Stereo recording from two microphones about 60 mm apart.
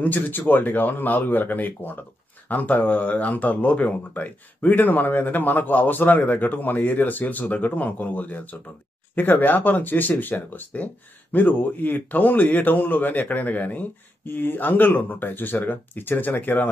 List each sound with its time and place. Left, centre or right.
0.0 s a man's voice: left